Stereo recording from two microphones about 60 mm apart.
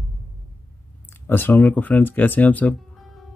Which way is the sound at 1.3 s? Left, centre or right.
Left.